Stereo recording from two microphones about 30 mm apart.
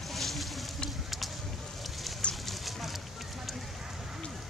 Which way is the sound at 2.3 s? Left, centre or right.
Centre.